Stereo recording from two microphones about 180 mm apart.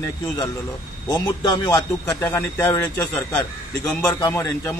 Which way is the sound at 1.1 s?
25° left (ahead or behind).